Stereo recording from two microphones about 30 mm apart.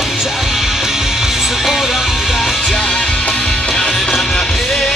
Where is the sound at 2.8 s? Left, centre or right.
Left.